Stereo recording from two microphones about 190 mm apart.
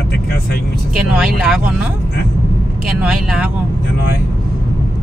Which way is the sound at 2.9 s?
5° right (ahead or behind).